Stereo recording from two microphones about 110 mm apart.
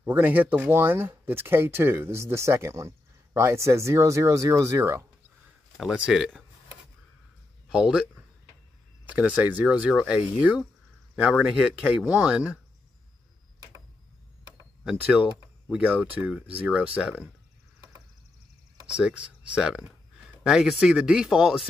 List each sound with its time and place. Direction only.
0.0 s speech: 20° right (ahead or behind)
5.8 s speech: 5° right (ahead or behind)
7.7 s speech: 10° right (ahead or behind)
15.7 s speech: 10° right (ahead or behind)
18.9 s speech: 10° right (ahead or behind)